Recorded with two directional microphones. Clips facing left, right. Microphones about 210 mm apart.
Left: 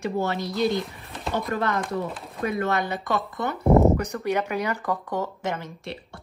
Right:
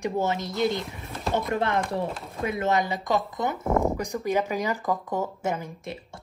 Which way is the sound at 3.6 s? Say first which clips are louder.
Left 8 dB; 20° left (ahead or behind).